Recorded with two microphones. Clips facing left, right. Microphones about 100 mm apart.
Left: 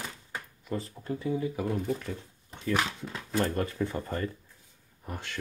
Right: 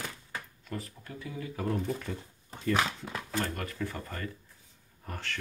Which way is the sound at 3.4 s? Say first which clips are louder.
Left 6 dB; 25° left (ahead or behind).